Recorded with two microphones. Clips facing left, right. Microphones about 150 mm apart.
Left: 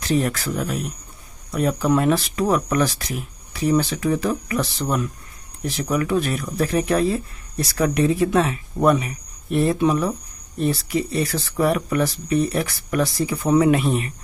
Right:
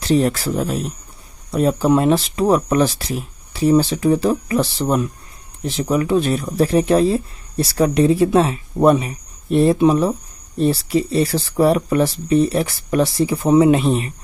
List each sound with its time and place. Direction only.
0.0 s speech: 30° right (ahead or behind)